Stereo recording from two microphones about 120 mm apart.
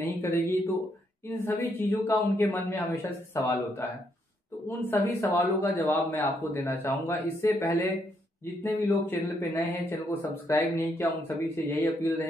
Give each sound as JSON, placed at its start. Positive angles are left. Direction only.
{"t": 0.0, "sound": "a man's voice", "side_deg": 20}